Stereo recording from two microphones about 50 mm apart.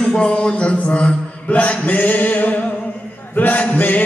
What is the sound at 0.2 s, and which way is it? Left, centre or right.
Mantra, centre.